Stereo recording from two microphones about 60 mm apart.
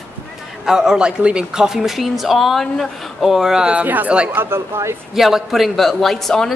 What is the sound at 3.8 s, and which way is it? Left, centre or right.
Speech, right.